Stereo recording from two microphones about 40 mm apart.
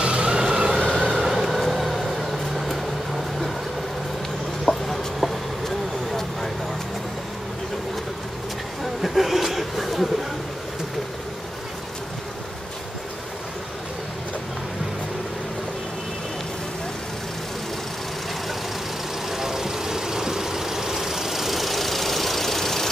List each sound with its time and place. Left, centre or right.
0.0 s vehicle: right
1.2 s vehicle: centre
4.6 s chicken: centre
9.0 s a sound: centre
19.3 s vehicle: centre